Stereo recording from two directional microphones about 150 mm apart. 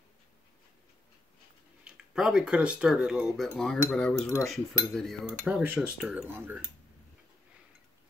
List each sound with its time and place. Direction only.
1.9 s speech: 5° right (ahead or behind)
3.4 s cutlery: 5° left (ahead or behind)
5.5 s speech: 10° right (ahead or behind)
6.2 s speech: 15° right (ahead or behind)